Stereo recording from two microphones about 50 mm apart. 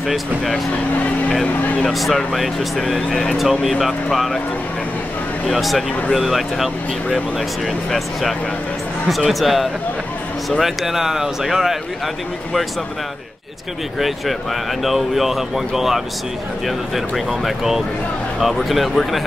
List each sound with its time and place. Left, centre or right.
1.8 s speech: centre
3.1 s speech: centre
3.3 s speech: centre
5.5 s speech: centre
13.9 s speech: centre